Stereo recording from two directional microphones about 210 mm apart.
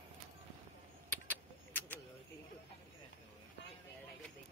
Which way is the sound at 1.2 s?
10° left (ahead or behind).